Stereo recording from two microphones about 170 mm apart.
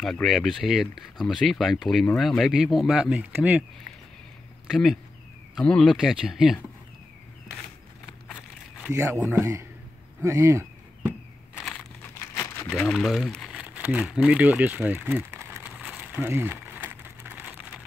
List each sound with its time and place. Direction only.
0.0 s speech: centre (ahead or behind)
4.6 s speech: centre (ahead or behind)
9.3 s a man's voice: 20° right (ahead or behind)
12.5 s crumpling: 10° left (ahead or behind); by 17.6 s 15° right (ahead or behind)